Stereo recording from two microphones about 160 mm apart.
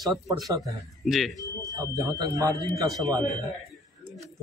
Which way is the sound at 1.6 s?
20° right (ahead or behind).